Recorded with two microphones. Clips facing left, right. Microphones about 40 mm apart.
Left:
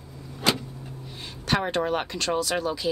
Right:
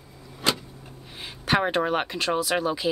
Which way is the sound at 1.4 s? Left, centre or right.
Centre.